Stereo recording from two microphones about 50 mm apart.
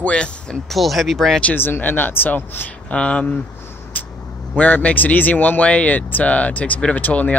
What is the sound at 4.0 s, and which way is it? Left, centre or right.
Vehicle, left.